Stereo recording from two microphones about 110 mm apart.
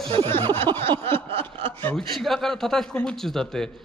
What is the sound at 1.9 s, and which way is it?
Speech, centre (ahead or behind).